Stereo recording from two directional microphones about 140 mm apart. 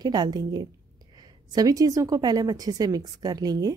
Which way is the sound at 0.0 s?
30° right (ahead or behind).